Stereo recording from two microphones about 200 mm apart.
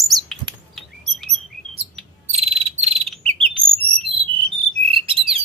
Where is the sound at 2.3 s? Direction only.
30° right (ahead or behind).